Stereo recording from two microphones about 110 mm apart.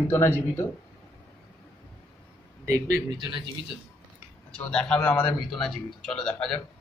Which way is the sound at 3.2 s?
45° right (ahead or behind).